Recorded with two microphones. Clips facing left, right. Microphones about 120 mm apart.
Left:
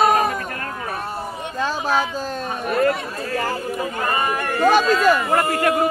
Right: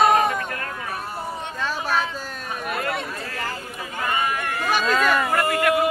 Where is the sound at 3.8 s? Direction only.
35° left (ahead or behind).